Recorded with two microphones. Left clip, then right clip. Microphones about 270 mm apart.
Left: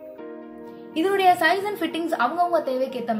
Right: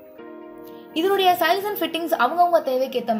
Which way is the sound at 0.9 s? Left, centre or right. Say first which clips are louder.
Even; centre.